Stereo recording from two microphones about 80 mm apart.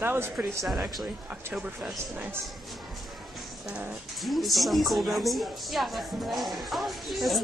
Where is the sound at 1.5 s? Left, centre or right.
Centre.